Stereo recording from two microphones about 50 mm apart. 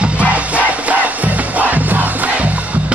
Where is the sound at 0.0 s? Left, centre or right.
Right.